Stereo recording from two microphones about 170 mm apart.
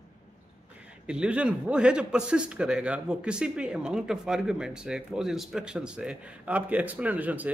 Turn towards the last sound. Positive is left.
turn(degrees=-10)  # may be behind; listen again after turning